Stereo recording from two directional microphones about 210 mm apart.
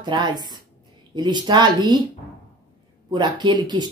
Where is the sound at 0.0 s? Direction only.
20° right (ahead or behind).